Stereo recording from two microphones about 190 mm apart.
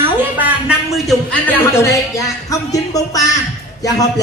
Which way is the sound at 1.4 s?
10° left (ahead or behind).